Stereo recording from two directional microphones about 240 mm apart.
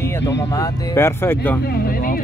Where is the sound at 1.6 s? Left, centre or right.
Left.